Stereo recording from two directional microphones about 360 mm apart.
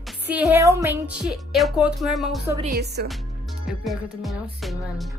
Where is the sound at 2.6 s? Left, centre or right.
Right.